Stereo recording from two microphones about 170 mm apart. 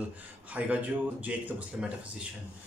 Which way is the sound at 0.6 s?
10° right (ahead or behind).